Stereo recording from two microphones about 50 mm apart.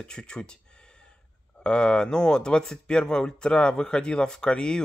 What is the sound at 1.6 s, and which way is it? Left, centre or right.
Speech, centre.